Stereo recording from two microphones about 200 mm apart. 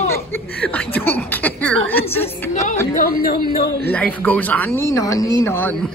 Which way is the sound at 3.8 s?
10° left (ahead or behind).